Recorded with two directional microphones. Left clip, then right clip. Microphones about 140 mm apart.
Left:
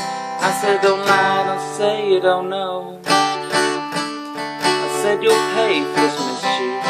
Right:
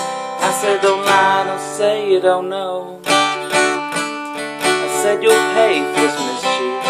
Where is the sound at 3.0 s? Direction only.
25° right (ahead or behind).